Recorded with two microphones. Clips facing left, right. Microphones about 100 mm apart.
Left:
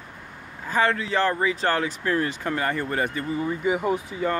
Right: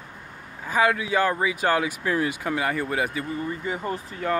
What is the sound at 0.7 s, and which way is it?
Speech, 10° right (ahead or behind).